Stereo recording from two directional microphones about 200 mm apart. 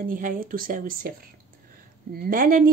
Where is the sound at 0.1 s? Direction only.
45° right (ahead or behind).